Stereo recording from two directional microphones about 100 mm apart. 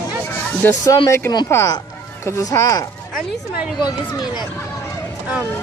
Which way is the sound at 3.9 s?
45° left (ahead or behind).